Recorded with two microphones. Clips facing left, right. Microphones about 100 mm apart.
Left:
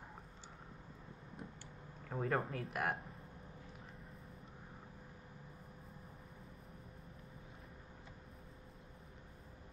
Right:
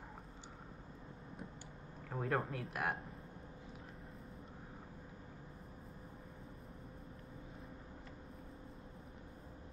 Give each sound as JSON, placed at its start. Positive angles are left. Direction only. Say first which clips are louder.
{"t": 2.0, "sound": "speech", "louder": "even", "side_deg": 0}